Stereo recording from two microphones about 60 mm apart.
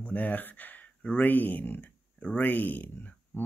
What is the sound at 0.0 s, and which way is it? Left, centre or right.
Speech, left.